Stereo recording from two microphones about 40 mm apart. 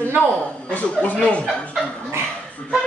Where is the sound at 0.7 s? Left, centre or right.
Left.